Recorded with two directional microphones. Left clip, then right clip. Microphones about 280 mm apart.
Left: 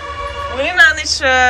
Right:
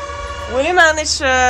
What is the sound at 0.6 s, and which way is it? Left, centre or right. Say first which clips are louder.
Speech: left 1 dB; right.